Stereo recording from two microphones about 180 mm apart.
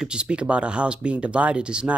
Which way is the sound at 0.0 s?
5° right (ahead or behind).